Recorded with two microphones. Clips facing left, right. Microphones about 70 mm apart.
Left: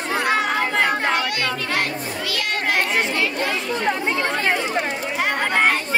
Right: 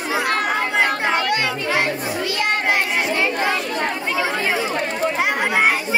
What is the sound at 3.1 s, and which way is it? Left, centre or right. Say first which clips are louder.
Chatter: right 2 dB; right.